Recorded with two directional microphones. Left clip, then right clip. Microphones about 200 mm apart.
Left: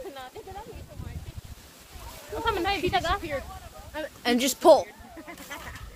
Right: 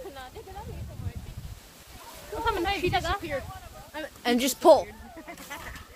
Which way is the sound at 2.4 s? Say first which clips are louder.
Left 1 dB; 35° left (ahead or behind).